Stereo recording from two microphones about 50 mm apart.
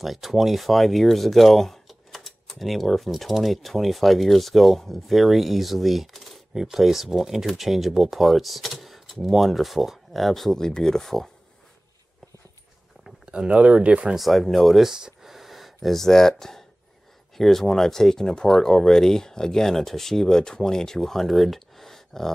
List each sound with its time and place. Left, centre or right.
0.0 s speech: centre
13.0 s a sound: centre
13.5 s speech: right
14.1 s speech: centre
14.9 s a sound: centre
17.4 s speech: centre